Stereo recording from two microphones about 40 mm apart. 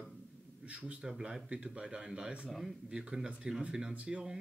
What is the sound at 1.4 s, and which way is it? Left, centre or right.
Speech, right.